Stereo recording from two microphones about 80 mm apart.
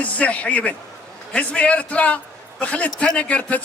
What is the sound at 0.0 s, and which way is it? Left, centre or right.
A man's voice, centre.